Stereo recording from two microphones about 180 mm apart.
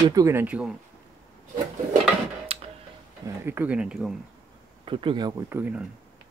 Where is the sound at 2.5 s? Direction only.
30° right (ahead or behind).